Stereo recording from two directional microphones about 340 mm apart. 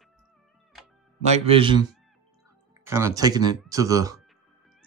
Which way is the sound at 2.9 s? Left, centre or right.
Centre.